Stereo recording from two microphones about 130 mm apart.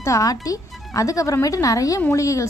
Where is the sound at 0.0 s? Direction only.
25° left (ahead or behind).